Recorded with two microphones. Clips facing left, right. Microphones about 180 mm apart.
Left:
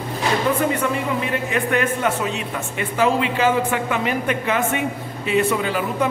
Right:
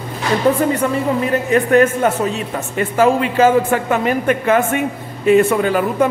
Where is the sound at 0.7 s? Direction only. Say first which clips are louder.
Right 5 dB; 40° right (ahead or behind).